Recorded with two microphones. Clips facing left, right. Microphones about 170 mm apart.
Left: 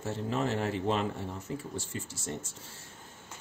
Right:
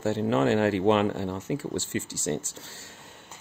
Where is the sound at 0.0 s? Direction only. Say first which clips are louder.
Right 8 dB; 80° right.